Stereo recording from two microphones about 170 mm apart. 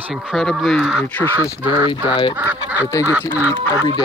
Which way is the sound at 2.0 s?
30° left (ahead or behind).